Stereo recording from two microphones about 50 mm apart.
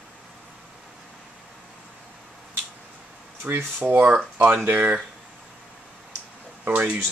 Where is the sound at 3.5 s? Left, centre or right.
Right.